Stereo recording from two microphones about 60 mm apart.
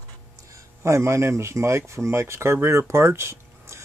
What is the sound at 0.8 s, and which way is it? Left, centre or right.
Speech, right.